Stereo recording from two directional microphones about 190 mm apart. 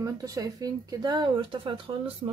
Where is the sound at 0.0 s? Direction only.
20° right (ahead or behind).